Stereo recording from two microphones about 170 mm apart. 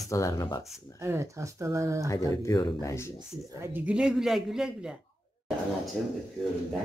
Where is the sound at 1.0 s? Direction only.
15° right (ahead or behind).